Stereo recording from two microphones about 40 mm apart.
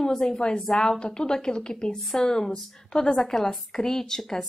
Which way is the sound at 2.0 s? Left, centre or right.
Centre.